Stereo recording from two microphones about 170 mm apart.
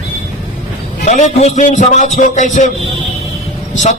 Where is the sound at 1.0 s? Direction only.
45° left (ahead or behind).